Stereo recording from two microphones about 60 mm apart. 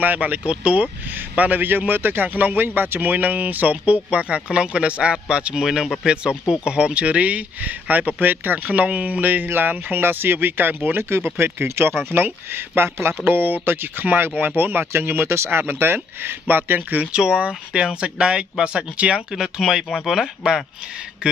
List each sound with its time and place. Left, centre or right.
0.0 s a man's voice: right
15.6 s speech: right
17.0 s speech: centre